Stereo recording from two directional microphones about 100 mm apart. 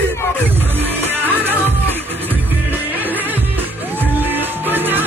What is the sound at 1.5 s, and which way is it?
Music, 20° left (ahead or behind).